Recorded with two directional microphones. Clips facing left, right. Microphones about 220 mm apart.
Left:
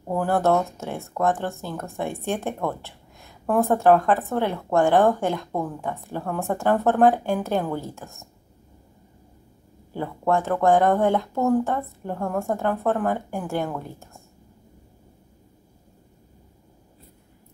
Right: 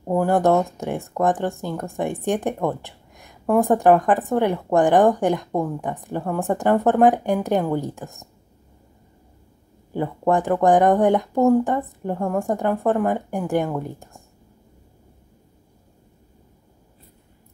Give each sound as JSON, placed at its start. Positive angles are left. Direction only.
{"t": 0.1, "sound": "speech", "side_deg": -15}
{"t": 9.9, "sound": "speech", "side_deg": -15}